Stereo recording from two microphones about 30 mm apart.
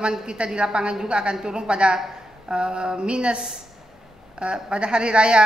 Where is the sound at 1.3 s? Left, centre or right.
Right.